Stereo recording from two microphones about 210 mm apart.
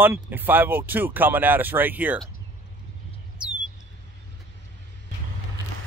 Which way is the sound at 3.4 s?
5° right (ahead or behind).